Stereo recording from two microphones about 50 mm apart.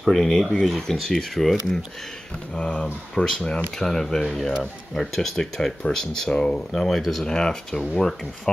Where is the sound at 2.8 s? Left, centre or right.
Centre.